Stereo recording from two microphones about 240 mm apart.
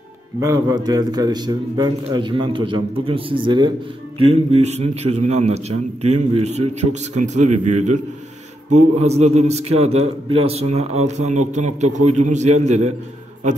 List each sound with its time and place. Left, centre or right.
0.4 s a man's voice: centre